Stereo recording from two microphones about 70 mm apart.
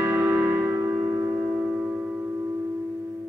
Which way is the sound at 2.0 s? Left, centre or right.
Right.